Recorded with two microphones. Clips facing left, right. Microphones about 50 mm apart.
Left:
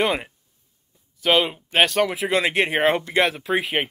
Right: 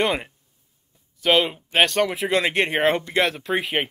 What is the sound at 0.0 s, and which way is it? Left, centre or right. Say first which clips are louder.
Speech: even; centre.